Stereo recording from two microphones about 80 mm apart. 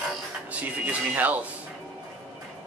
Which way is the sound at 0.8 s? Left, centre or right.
Centre.